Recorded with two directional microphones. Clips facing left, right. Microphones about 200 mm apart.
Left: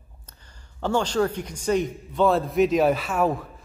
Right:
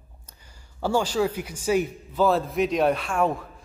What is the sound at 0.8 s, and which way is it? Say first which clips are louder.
A man's voice: even; 10° right (ahead or behind).